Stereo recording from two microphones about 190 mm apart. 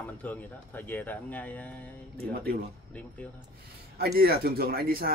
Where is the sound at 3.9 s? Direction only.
55° right (ahead or behind).